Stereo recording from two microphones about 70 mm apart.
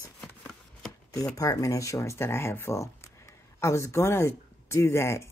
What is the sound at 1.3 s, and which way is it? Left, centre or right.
Speech, left.